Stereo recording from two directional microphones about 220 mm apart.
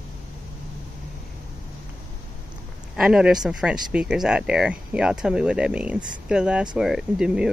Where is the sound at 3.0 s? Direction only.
5° right (ahead or behind).